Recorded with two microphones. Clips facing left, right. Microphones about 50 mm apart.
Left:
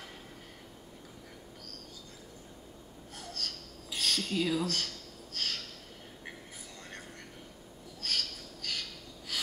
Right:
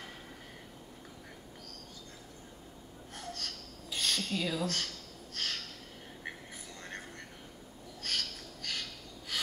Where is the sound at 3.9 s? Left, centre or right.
Centre.